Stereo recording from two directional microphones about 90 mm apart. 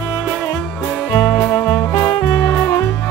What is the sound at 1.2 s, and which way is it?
Music, 25° left (ahead or behind).